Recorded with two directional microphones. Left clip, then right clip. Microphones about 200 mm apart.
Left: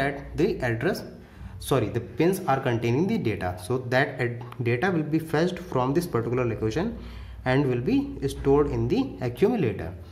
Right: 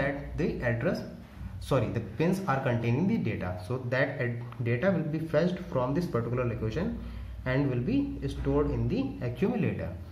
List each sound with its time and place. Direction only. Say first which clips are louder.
0.0 s speech: left 5 dB; 45° left (ahead or behind)